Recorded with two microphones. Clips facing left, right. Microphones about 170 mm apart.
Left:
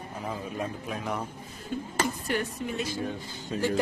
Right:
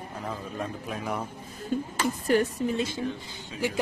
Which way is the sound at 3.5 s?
40° left (ahead or behind).